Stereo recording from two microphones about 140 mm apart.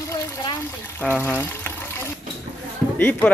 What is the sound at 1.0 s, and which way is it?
Water, 15° left (ahead or behind).